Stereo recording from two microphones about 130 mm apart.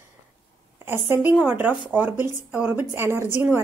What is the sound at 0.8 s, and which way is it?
Speech, 20° right (ahead or behind).